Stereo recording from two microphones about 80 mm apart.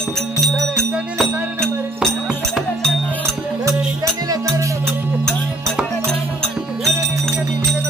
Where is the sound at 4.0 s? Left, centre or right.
Right.